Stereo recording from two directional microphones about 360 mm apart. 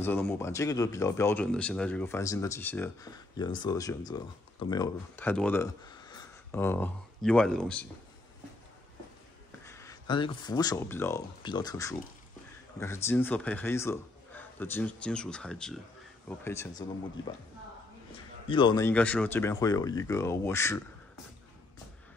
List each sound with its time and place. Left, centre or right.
0.0 s speech: centre
9.7 s speech: centre
18.5 s speech: centre